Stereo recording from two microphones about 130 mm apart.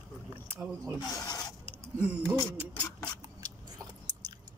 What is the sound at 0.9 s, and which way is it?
Speech, 30° left (ahead or behind).